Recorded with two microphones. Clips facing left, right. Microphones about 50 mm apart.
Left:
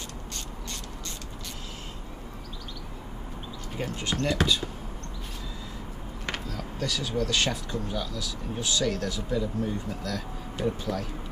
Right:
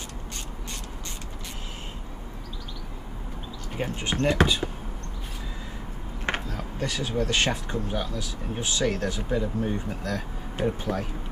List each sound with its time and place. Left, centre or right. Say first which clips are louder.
3.7 s speech: right 2 dB; right
6.2 s speech: right 4 dB; right